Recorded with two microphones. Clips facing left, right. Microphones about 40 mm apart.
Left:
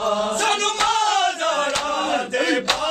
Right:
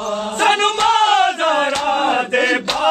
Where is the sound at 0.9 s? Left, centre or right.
Right.